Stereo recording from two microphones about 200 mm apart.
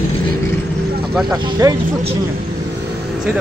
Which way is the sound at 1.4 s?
25° right (ahead or behind).